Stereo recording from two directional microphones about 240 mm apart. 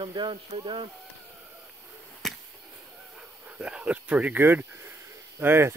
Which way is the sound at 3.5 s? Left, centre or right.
Centre.